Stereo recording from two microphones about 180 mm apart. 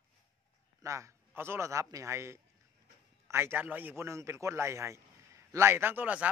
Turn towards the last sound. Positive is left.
turn(degrees=-10)  # may be behind; listen again after turning